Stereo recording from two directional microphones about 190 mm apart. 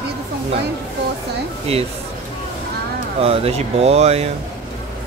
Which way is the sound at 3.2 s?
30° right (ahead or behind).